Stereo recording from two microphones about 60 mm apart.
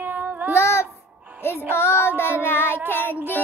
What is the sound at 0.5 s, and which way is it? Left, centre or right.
Child singing, left.